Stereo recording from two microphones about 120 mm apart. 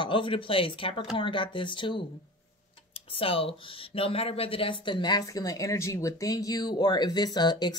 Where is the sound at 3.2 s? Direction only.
50° left (ahead or behind); by 7.7 s 35° left (ahead or behind).